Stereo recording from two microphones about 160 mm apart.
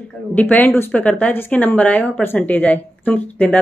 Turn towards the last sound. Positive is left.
turn(degrees=10)  # may be behind; listen again after turning